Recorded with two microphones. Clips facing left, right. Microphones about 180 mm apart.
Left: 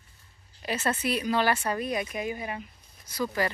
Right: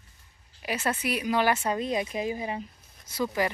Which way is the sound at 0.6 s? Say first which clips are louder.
Even; 10° right (ahead or behind).